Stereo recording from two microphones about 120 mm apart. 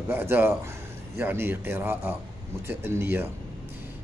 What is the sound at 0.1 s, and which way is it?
A man's voice, 20° right (ahead or behind).